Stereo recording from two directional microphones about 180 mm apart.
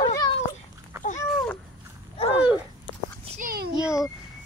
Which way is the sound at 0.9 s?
15° right (ahead or behind).